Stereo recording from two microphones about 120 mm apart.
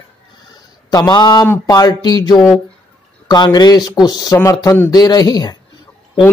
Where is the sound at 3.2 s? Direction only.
35° left (ahead or behind).